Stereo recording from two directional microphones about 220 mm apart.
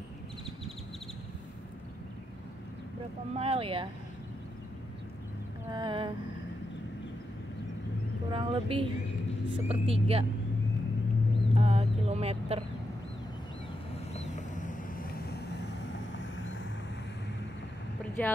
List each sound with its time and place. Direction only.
3.3 s speech: 25° right (ahead or behind)
5.7 s speech: 20° right (ahead or behind)
8.3 s speech: 25° right (ahead or behind)
11.5 s a sound: 25° right (ahead or behind)
14.1 s vehicle: 30° left (ahead or behind); by 16.6 s 60° left (ahead or behind)
18.2 s a woman's voice: 10° left (ahead or behind)